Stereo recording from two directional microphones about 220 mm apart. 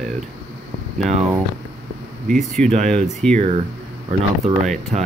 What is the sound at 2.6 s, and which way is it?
Speech, 30° right (ahead or behind).